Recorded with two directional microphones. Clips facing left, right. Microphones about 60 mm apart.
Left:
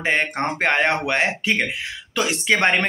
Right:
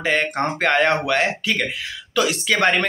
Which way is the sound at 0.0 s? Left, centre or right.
Left.